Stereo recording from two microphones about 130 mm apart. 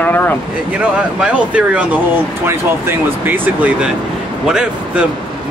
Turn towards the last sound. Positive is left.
turn(degrees=-5)  # may be behind; listen again after turning